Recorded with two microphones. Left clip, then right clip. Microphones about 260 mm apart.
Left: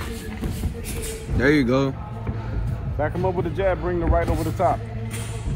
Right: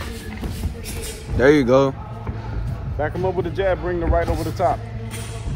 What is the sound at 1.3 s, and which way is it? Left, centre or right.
Speech, centre.